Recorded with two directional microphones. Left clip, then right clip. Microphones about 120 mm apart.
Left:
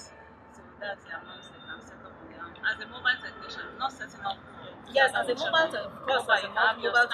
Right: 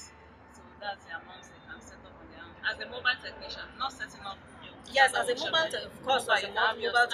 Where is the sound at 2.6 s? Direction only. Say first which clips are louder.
Left 2 dB; 5° right (ahead or behind).